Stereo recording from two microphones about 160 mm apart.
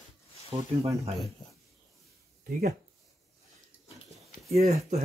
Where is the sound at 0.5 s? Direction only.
40° right (ahead or behind).